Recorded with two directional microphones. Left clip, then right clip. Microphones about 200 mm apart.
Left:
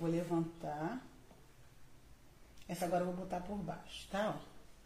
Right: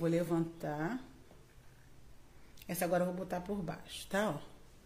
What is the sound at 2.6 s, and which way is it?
Speech, 50° right (ahead or behind).